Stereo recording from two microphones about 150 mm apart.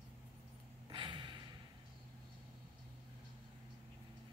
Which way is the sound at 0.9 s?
35° right (ahead or behind).